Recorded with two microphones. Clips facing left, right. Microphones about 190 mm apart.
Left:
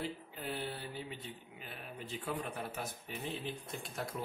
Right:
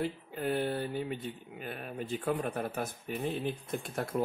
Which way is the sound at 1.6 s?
55° right (ahead or behind).